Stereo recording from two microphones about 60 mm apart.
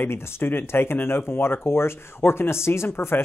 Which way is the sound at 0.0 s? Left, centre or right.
Left.